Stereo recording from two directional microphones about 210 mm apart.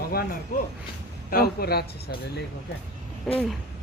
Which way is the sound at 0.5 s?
40° left (ahead or behind).